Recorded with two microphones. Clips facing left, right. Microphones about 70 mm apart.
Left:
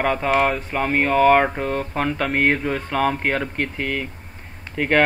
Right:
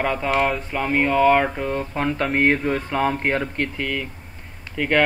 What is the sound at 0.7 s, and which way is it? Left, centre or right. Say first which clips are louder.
Mantra: even; left.